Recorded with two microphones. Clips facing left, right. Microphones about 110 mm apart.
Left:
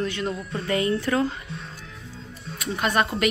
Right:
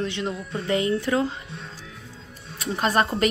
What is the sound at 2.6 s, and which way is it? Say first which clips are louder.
Speech: right 1 dB; 30° right (ahead or behind).